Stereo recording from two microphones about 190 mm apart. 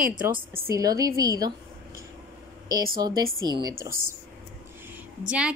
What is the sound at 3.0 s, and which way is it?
Speech, 20° right (ahead or behind).